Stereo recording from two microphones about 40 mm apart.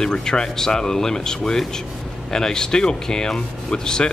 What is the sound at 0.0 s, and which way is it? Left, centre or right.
Speech, centre.